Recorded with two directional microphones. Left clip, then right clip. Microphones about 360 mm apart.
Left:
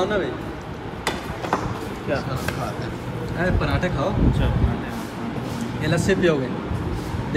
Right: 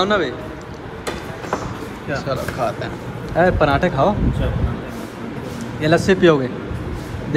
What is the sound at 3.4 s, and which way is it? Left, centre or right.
Speech, centre.